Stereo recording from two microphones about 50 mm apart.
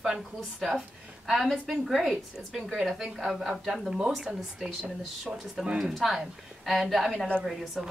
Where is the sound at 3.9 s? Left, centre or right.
Centre.